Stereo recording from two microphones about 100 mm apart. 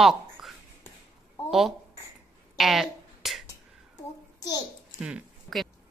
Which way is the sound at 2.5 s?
Centre (ahead or behind).